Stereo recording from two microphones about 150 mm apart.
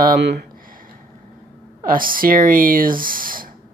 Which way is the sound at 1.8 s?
70° right (ahead or behind).